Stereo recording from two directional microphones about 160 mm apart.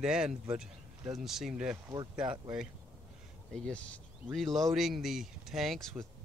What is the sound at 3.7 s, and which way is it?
Speech, 5° left (ahead or behind).